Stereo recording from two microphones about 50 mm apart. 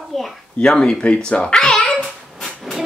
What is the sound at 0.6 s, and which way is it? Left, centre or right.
A child's voice, centre.